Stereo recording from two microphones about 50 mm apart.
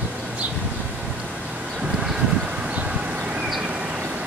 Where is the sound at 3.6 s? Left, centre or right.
Right.